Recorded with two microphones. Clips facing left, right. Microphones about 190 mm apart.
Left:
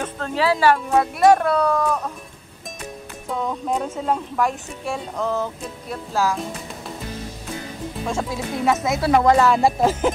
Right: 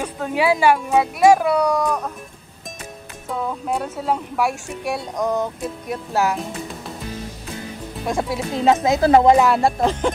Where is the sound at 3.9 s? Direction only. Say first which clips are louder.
Even; 10° right (ahead or behind).